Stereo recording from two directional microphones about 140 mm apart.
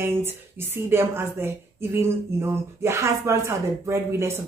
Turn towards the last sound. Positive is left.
turn(degrees=-20)  # may be behind; listen again after turning